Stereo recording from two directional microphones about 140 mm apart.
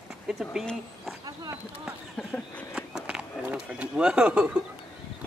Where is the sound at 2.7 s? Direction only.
5° right (ahead or behind).